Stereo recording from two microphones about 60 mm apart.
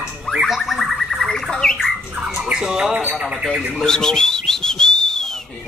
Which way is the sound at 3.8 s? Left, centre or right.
Centre.